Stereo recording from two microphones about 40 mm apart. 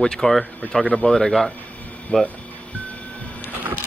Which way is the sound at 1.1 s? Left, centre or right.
Centre.